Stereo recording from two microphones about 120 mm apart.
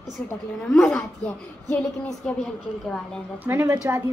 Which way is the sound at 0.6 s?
10° left (ahead or behind).